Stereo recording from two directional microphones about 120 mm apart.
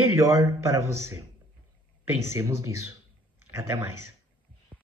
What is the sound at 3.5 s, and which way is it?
Speech, 25° right (ahead or behind).